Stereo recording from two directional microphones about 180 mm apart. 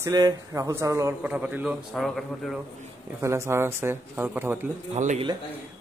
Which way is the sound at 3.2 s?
15° right (ahead or behind).